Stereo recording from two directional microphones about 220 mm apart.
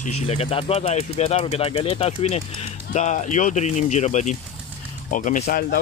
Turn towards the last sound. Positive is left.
turn(degrees=35)  # may be behind; listen again after turning